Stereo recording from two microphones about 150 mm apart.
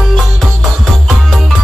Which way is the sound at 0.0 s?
Centre (ahead or behind).